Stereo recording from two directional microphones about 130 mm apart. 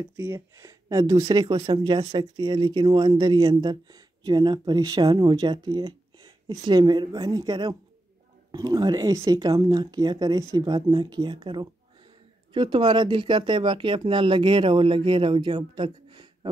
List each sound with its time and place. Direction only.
0.2 s speech: 25° right (ahead or behind)